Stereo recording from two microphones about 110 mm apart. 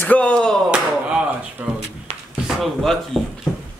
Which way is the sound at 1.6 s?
15° right (ahead or behind).